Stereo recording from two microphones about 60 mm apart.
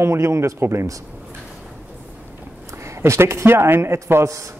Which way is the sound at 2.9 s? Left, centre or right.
Right.